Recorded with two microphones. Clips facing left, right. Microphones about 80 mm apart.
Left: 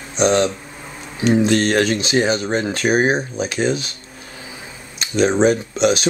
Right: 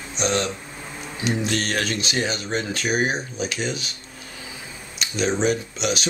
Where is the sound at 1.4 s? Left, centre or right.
Left.